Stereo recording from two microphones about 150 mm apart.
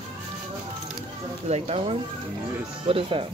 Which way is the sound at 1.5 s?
45° right (ahead or behind).